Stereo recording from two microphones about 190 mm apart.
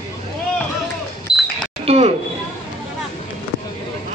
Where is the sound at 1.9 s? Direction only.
35° right (ahead or behind).